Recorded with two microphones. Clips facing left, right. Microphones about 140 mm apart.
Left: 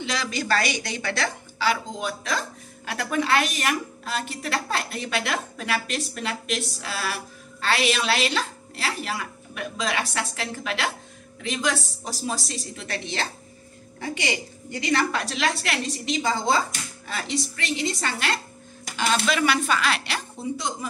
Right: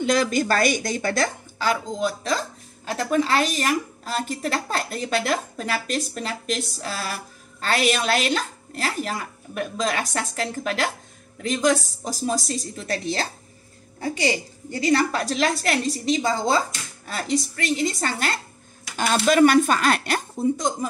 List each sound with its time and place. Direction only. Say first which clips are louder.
0.0 s a woman's voice: right 8 dB; 50° right (ahead or behind)